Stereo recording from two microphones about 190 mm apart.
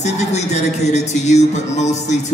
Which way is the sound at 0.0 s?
35° left (ahead or behind).